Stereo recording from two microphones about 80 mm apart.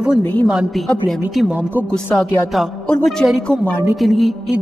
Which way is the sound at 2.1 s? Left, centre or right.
Centre.